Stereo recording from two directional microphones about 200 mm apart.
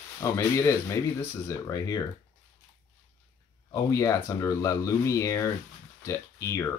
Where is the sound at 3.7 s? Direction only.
15° left (ahead or behind).